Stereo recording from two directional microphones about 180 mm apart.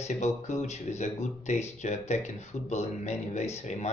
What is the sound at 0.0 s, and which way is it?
Speech, 40° left (ahead or behind).